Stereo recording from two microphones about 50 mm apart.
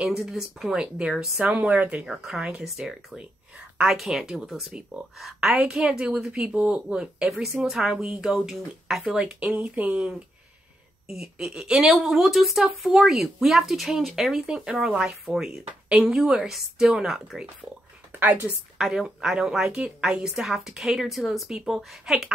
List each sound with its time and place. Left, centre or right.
0.0 s a woman's voice: centre; by 2.0 s right
2.0 s a woman's voice: centre
3.2 s a sound: centre
3.9 s a woman's voice: centre
9.4 s a woman's voice: right
18.1 s a woman's voice: right
18.8 s a woman's voice: centre